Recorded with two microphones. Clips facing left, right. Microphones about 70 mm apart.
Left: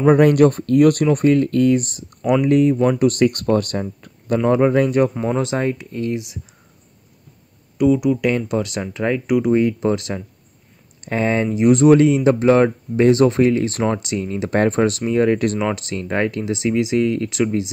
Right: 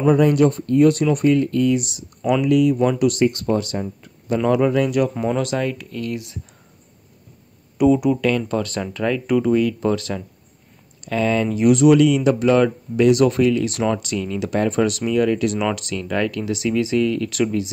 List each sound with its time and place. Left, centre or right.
0.0 s speech: left
1.0 s speech: left
3.0 s speech: left
4.5 s speech: left
5.2 s speech: left
7.7 s speech: centre
8.2 s speech: centre
11.1 s speech: left
11.4 s speech: left
11.7 s speech: left